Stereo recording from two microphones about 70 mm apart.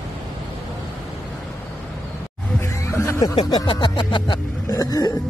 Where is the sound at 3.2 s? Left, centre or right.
Left.